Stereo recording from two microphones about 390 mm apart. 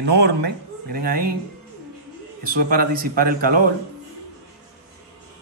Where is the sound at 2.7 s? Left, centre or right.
Right.